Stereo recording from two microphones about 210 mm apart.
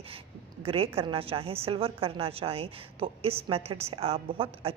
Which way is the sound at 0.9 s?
25° right (ahead or behind).